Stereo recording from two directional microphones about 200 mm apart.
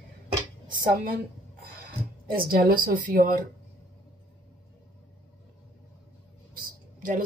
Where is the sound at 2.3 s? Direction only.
45° right (ahead or behind).